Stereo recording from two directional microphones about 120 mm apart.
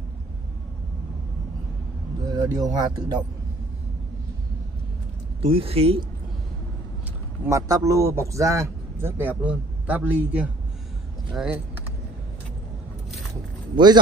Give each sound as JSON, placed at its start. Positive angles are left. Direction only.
{"t": 2.2, "sound": "speech", "side_deg": -30}
{"t": 5.4, "sound": "speech", "side_deg": -50}
{"t": 7.4, "sound": "speech", "side_deg": -25}
{"t": 13.7, "sound": "speech", "side_deg": -40}